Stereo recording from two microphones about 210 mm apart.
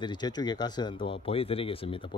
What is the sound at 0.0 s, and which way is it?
Speech, 20° left (ahead or behind).